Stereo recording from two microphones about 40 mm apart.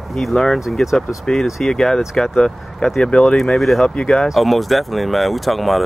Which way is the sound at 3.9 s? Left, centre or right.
Centre.